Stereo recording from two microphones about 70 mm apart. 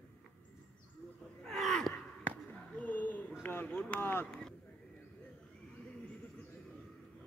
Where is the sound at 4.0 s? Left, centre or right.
Left.